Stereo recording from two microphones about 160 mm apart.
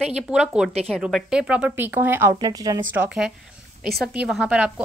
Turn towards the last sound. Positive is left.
turn(degrees=-5)  # may be behind; listen again after turning